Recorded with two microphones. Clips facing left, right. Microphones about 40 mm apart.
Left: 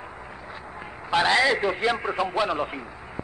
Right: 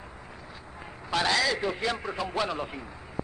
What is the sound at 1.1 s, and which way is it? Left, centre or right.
A man's voice, left.